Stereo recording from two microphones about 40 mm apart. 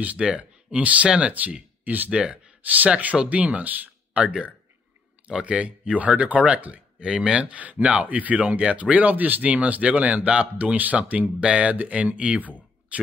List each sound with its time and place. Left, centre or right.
0.2 s speech: right
2.0 s speech: right
2.6 s speech: right
4.1 s speech: right
11.4 s speech: right
12.4 s speech: left
12.9 s speech: right